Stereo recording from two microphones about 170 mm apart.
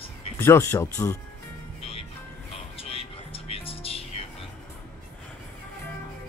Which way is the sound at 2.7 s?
35° left (ahead or behind).